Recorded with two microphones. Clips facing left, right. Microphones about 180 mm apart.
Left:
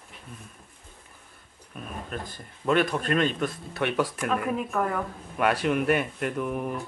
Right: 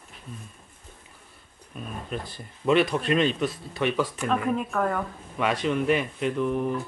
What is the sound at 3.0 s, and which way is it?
Speech, 50° left (ahead or behind).